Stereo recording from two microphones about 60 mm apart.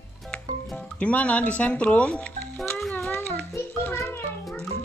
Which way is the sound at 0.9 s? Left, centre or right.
Left.